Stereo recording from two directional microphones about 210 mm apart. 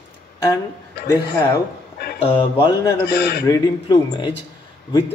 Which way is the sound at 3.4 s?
20° left (ahead or behind).